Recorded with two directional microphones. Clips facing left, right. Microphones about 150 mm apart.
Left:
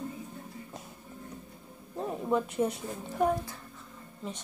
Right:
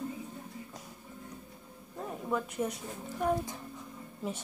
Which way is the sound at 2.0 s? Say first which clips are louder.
Left 5 dB; 25° left (ahead or behind).